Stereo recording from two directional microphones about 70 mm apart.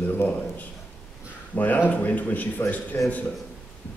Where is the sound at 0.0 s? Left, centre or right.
Left.